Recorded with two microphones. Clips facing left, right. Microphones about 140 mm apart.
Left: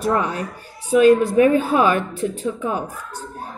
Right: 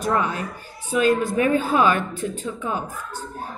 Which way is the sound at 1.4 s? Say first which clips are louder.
Left 4 dB; 10° left (ahead or behind).